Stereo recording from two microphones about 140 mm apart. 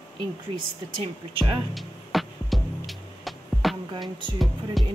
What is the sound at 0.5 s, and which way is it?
Speech, 35° right (ahead or behind).